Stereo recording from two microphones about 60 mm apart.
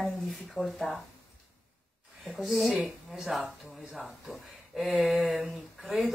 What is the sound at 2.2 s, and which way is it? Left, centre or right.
Speech, centre.